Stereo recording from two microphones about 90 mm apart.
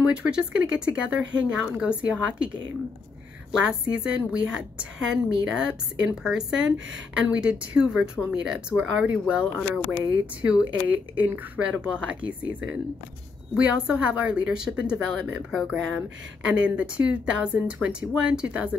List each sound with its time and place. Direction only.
0.1 s a woman's voice: 10° right (ahead or behind)
3.5 s a woman's voice: 10° right (ahead or behind)
16.4 s a woman's voice: 15° right (ahead or behind)